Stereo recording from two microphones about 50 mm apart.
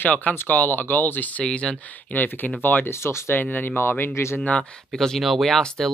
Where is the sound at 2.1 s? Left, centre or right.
Left.